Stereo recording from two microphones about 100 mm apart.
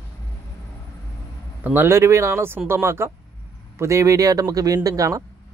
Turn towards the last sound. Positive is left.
turn(degrees=-35)  # may be behind; listen again after turning